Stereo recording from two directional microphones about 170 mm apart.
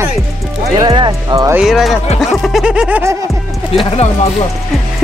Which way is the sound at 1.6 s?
Centre (ahead or behind).